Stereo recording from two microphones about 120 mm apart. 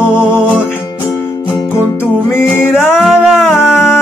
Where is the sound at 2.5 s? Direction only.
20° left (ahead or behind).